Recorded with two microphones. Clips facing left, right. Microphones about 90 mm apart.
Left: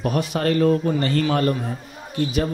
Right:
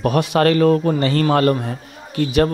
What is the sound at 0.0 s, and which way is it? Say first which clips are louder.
Speech: right 6 dB; 80° right.